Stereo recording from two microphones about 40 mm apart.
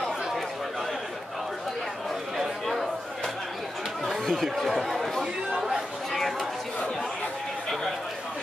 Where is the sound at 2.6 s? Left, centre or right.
Centre.